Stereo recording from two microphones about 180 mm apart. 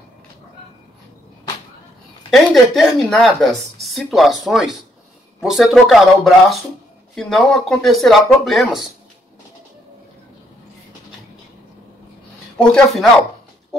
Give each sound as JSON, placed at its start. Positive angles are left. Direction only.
{"t": 2.3, "sound": "speech", "side_deg": 0}
{"t": 12.5, "sound": "speech", "side_deg": 5}